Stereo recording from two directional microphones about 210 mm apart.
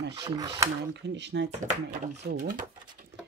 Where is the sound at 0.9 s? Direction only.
55° right (ahead or behind).